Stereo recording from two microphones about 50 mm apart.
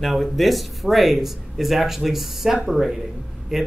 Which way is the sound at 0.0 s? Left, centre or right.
Centre.